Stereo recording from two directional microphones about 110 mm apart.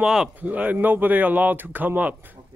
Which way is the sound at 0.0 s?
5° right (ahead or behind).